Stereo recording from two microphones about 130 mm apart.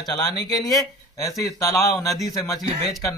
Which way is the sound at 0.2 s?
30° left (ahead or behind).